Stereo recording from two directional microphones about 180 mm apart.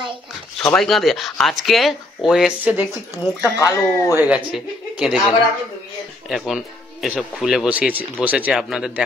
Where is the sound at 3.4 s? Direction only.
15° left (ahead or behind).